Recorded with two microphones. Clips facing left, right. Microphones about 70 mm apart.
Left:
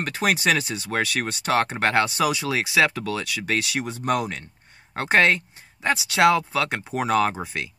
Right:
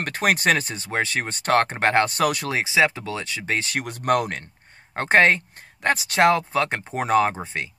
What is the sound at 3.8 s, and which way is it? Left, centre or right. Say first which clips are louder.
Speech: right 2 dB; right.